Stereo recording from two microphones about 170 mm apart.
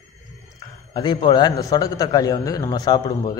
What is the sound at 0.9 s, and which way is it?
A man's voice, 25° left (ahead or behind).